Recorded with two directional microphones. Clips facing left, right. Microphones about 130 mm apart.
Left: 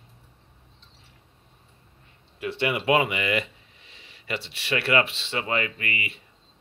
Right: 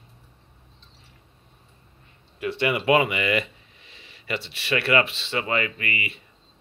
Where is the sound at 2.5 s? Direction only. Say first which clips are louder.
Right 2 dB; 15° left (ahead or behind).